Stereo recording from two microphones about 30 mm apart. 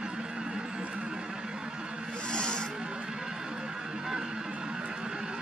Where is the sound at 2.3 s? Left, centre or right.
Left.